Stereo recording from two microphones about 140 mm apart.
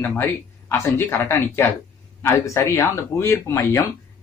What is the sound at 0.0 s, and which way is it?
Speech, 15° left (ahead or behind).